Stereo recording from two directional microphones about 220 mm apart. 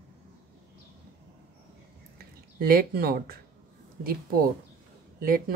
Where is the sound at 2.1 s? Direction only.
40° right (ahead or behind).